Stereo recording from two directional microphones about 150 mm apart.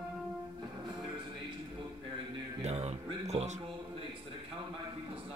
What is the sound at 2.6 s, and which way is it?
Music, 45° right (ahead or behind).